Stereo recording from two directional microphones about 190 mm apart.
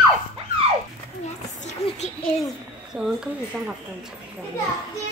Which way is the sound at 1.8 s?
35° left (ahead or behind).